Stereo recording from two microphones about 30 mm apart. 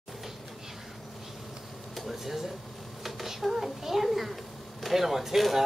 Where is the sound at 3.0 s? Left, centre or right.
Centre.